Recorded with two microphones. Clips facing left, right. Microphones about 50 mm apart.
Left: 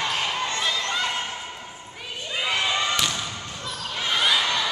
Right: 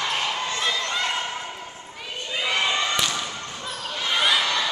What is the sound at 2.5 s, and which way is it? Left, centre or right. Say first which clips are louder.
Slam: right 1 dB; centre.